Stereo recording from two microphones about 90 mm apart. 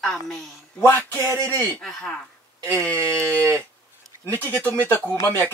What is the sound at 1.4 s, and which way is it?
Speech, 15° left (ahead or behind).